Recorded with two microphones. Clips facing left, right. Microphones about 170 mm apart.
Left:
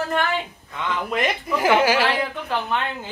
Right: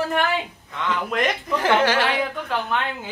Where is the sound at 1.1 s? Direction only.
5° left (ahead or behind).